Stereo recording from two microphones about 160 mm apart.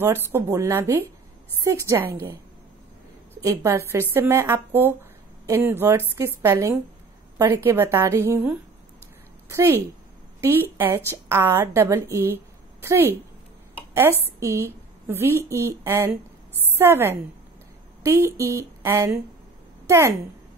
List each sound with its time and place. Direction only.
0.0 s a woman's voice: 15° right (ahead or behind)
3.3 s a woman's voice: 20° right (ahead or behind)
14.4 s a woman's voice: 15° right (ahead or behind)